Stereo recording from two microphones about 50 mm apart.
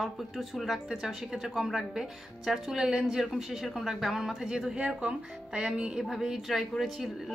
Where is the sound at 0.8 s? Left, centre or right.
Centre.